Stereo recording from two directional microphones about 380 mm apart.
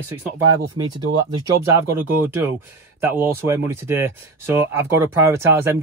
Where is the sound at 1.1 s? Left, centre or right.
Right.